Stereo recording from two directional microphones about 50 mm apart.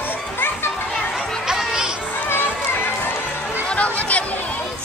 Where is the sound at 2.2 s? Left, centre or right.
Left.